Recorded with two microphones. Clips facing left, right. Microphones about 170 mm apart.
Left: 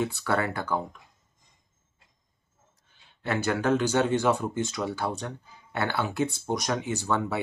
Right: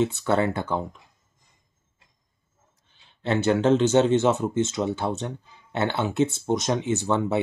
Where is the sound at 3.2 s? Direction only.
25° right (ahead or behind).